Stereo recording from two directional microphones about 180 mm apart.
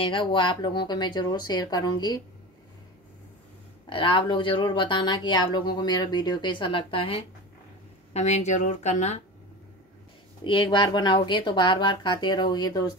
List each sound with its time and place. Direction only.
0.0 s speech: 25° left (ahead or behind)
3.9 s a woman's voice: 30° left (ahead or behind)
10.4 s speech: 30° left (ahead or behind)